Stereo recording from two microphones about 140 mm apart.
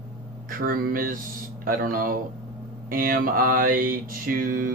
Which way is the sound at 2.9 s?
90° right.